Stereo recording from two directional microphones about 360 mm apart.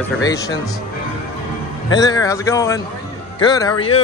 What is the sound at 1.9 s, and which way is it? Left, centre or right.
A man's voice, centre.